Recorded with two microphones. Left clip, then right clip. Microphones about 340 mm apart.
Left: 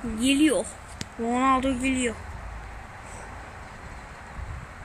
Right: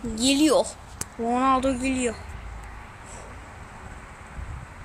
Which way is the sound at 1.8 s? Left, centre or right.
Right.